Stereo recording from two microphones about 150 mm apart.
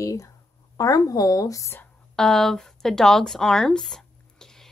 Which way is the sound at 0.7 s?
25° left (ahead or behind).